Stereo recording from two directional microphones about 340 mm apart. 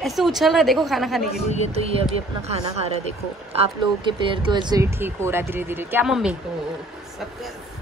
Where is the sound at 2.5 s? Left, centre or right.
Centre.